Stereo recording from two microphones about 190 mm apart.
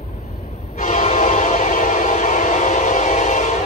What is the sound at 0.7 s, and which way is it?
Train, 40° left (ahead or behind).